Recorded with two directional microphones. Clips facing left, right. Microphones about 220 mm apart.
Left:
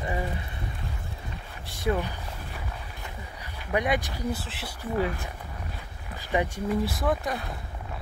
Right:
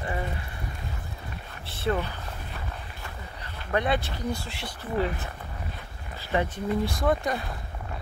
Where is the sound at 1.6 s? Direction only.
15° left (ahead or behind).